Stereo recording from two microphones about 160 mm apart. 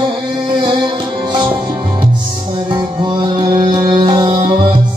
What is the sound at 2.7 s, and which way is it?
Music, 25° right (ahead or behind).